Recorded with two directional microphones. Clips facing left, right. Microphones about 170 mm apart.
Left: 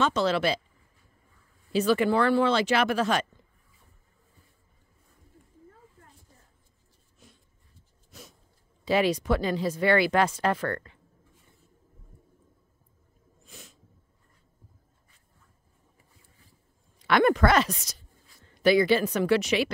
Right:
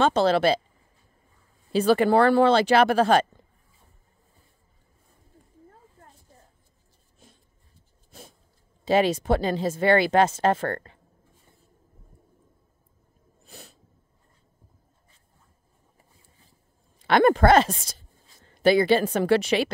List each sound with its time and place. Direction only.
0.0 s speech: 30° right (ahead or behind)
1.7 s speech: 35° right (ahead or behind)
8.1 s a sound: 30° right (ahead or behind)
8.8 s speech: 25° right (ahead or behind)
13.4 s a sound: 35° right (ahead or behind)
17.0 s a woman's voice: 30° right (ahead or behind)